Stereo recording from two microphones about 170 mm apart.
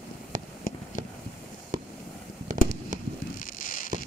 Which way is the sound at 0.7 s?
55° left (ahead or behind).